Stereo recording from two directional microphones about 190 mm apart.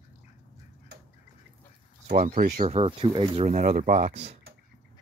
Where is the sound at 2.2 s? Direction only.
50° right (ahead or behind).